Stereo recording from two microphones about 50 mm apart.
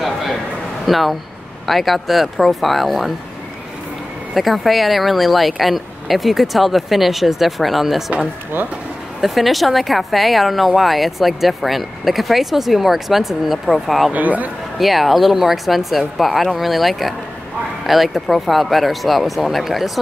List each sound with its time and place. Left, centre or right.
0.0 s a sound: centre
0.8 s speech: centre
4.3 s speech: centre
9.2 s speech: centre
14.1 s speech: right
14.8 s speech: centre